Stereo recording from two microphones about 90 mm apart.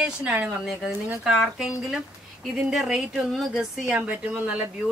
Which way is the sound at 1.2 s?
5° right (ahead or behind).